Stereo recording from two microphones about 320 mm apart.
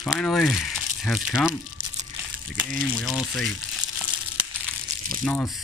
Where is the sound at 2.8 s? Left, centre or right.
Centre.